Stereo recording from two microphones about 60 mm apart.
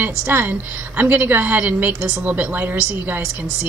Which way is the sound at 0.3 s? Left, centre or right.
Right.